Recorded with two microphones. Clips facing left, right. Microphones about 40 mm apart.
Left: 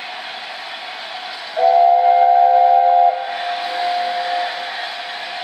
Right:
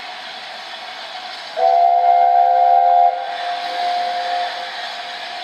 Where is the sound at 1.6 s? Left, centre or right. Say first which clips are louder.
Left 1 dB; centre.